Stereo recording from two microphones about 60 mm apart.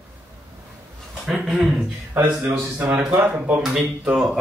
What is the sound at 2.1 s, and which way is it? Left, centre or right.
A man's voice, right.